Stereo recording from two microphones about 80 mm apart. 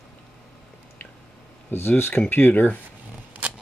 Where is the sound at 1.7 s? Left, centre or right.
Left.